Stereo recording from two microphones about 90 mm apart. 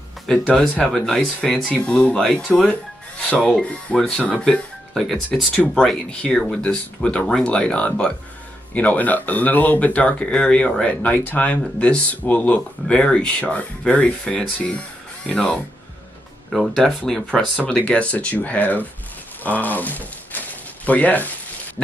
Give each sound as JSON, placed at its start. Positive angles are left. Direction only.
{"t": 0.5, "sound": "speech", "side_deg": 10}
{"t": 19.4, "sound": "a sound", "side_deg": 20}
{"t": 21.8, "sound": "speech", "side_deg": 10}